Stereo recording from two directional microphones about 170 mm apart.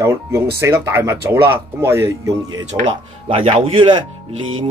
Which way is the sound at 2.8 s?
35° right (ahead or behind).